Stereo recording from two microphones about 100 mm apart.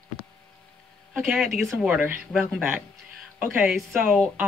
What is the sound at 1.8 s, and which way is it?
Speech, 15° right (ahead or behind).